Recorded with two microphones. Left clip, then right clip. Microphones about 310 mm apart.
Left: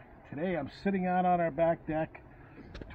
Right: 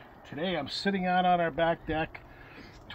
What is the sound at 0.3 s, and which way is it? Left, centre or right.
Speech, centre.